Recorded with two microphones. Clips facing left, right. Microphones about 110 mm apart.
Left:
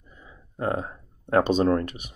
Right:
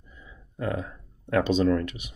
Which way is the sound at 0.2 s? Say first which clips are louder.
Left 3 dB; 35° left (ahead or behind).